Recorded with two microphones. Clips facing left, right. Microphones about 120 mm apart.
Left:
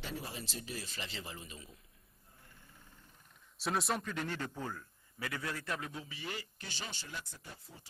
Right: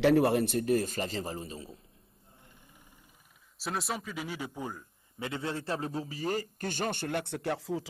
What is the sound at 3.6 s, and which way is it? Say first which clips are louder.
Speech: even; centre (ahead or behind).